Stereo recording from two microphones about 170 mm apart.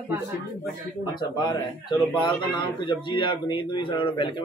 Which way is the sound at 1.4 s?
25° left (ahead or behind).